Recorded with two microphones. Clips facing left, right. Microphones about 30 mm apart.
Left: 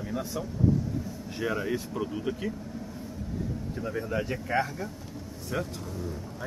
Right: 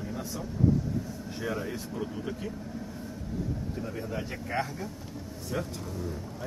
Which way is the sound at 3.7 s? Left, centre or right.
Centre.